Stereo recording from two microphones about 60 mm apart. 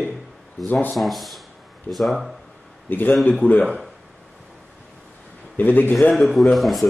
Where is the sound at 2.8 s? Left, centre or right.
Left.